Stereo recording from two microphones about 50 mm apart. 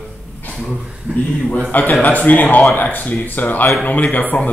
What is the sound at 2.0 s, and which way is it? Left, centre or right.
Speech, left.